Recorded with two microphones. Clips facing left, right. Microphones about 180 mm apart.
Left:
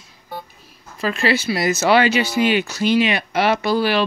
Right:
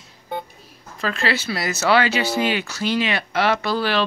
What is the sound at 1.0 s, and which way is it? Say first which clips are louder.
Speech: left 4 dB; 15° left (ahead or behind).